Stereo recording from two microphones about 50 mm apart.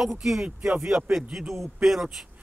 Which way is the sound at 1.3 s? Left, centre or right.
Centre.